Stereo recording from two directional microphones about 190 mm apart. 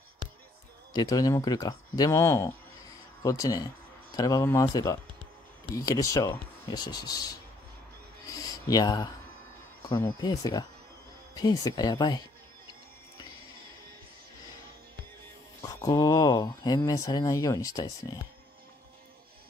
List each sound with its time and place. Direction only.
0.9 s speech: 20° left (ahead or behind)
8.3 s a sound: 20° left (ahead or behind)
9.9 s speech: 15° left (ahead or behind)
15.6 s speech: 20° left (ahead or behind)